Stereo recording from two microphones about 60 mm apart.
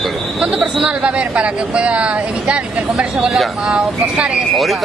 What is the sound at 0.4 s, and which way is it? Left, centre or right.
Speech, centre.